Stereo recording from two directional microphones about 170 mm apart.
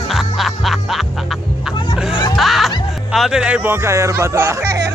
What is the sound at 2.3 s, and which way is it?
Music, centre (ahead or behind).